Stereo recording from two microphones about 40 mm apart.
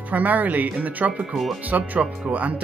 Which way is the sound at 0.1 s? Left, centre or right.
Right.